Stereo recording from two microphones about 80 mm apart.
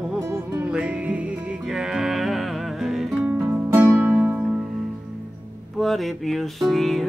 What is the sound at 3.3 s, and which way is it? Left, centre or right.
Music, right.